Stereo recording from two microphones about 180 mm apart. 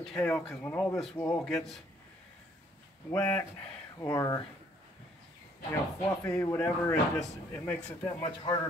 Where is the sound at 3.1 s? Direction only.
10° left (ahead or behind).